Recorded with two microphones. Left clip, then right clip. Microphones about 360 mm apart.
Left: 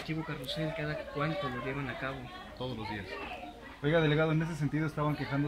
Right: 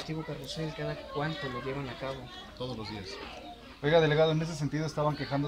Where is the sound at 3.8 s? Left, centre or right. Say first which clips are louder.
Right 4 dB; right.